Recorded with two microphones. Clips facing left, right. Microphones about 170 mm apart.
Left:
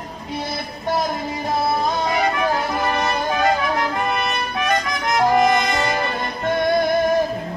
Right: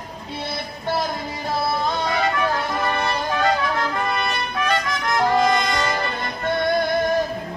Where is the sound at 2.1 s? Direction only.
15° left (ahead or behind).